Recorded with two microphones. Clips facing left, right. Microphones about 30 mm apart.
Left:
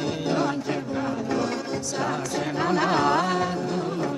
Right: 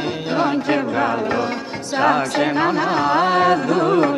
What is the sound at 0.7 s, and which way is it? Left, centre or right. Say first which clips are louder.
Music: right 9 dB; right.